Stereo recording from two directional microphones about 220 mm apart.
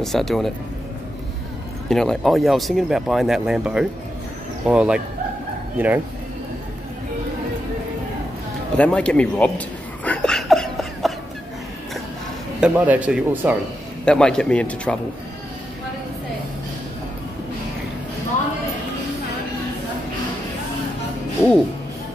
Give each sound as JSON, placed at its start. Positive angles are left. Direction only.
{"t": 0.0, "sound": "speech", "side_deg": 0}
{"t": 1.9, "sound": "speech", "side_deg": 0}
{"t": 8.7, "sound": "speech", "side_deg": 5}
{"t": 10.0, "sound": "a sound", "side_deg": 5}
{"t": 12.5, "sound": "speech", "side_deg": -5}
{"t": 14.0, "sound": "speech", "side_deg": 5}